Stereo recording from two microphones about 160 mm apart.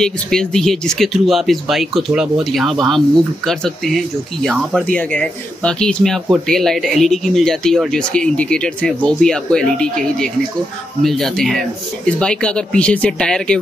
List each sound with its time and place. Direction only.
0.0 s speech: 5° left (ahead or behind)
11.0 s speech: centre (ahead or behind)